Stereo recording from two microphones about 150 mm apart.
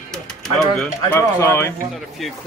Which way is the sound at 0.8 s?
15° left (ahead or behind).